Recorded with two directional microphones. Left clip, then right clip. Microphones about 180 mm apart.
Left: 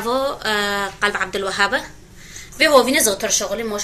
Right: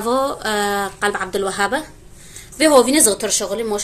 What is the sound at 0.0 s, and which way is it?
A woman's voice, 65° right (ahead or behind).